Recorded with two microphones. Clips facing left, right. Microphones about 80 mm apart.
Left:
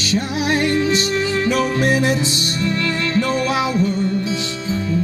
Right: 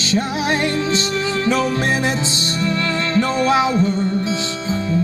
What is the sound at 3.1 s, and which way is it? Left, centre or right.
Music, right.